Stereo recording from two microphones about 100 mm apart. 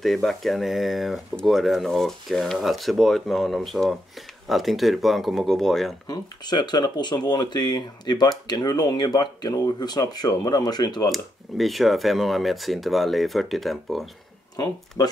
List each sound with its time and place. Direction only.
0.0 s speech: centre (ahead or behind)
6.0 s speech: 45° left (ahead or behind)
11.1 s speech: centre (ahead or behind)
15.0 s speech: 35° left (ahead or behind)